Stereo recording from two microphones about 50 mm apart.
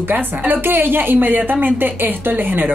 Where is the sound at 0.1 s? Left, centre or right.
Right.